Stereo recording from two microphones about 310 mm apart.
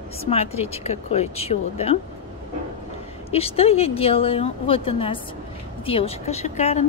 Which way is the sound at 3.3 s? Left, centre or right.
Centre.